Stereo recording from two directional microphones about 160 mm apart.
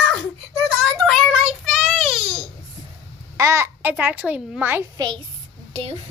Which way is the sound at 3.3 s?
15° right (ahead or behind).